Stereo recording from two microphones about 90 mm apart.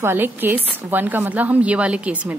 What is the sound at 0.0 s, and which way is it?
A woman's voice, 25° right (ahead or behind).